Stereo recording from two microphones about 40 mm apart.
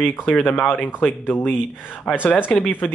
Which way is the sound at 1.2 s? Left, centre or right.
Left.